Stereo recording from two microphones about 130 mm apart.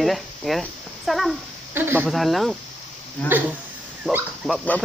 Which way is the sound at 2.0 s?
Centre (ahead or behind).